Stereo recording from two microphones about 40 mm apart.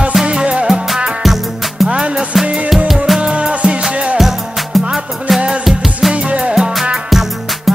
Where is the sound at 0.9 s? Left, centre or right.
Centre.